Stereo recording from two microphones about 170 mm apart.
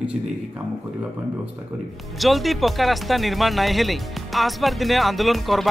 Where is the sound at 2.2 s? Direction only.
Centre (ahead or behind).